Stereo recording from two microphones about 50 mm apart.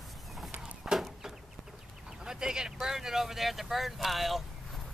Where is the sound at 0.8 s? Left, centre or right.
Centre.